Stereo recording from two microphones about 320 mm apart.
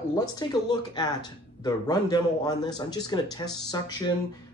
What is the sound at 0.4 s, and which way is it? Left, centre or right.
A man's voice, centre.